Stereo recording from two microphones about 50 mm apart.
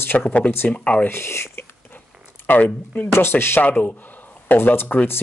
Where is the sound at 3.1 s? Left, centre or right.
Left.